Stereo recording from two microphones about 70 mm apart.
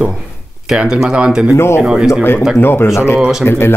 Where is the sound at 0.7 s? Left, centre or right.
Centre.